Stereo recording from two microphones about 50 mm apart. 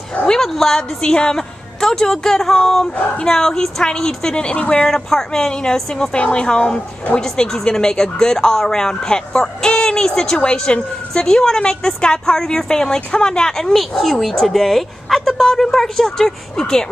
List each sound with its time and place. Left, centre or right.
0.3 s speech: centre
4.5 s speech: left
4.8 s speech: centre